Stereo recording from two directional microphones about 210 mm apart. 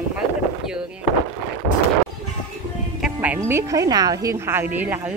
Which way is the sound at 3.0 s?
5° right (ahead or behind).